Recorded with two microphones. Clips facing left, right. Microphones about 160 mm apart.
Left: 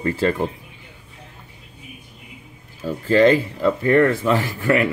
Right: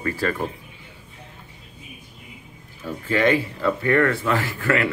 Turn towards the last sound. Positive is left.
turn(degrees=20)  # may be behind; listen again after turning